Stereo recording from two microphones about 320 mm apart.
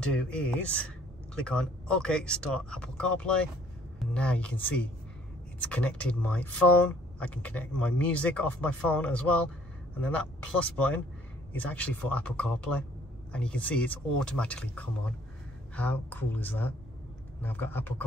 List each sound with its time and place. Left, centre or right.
0.0 s speech: centre
11.5 s speech: centre